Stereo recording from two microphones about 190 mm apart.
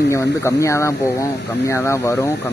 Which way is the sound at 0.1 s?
15° left (ahead or behind).